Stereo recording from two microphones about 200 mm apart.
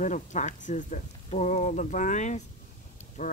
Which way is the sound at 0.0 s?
35° left (ahead or behind).